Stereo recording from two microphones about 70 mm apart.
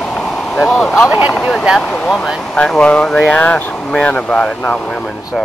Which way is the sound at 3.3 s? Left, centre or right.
Centre.